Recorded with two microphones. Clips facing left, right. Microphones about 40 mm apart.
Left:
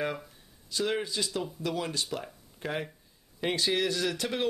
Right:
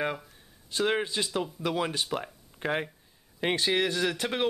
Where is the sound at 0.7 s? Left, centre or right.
Right.